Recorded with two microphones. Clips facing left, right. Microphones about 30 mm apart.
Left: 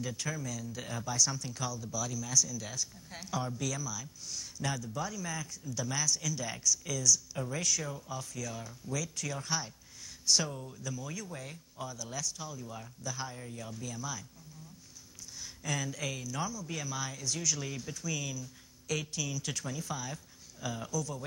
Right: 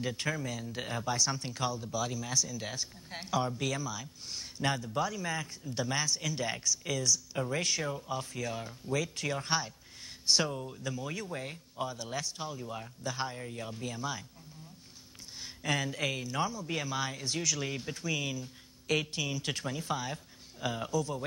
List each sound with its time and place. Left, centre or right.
0.0 s speech: right
7.1 s speech: right
15.4 s speech: right